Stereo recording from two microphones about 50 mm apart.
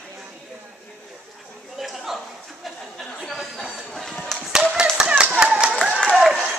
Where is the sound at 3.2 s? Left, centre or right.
Centre.